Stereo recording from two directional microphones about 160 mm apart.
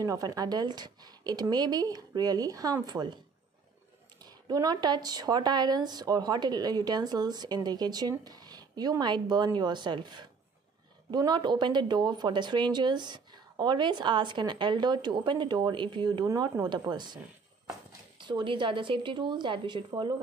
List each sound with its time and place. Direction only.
0.0 s speech: 20° right (ahead or behind)
4.2 s speech: 25° right (ahead or behind)